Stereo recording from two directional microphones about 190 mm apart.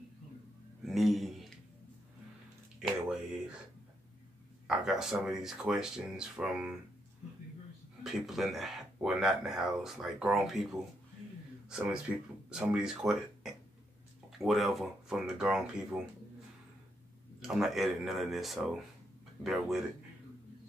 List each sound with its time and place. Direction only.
0.8 s a sound: centre (ahead or behind)
4.6 s speech: 5° right (ahead or behind)
8.0 s speech: centre (ahead or behind)
17.4 s speech: centre (ahead or behind)